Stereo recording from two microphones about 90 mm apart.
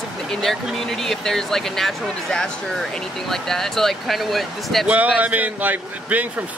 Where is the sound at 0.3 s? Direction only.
5° left (ahead or behind).